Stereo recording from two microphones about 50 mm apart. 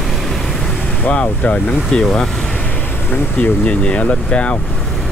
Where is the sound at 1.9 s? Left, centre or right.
Centre.